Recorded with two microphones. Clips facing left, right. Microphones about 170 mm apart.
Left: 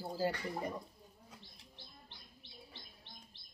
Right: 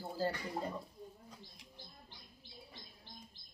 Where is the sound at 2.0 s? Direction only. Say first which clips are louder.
Right 1 dB; 70° left (ahead or behind).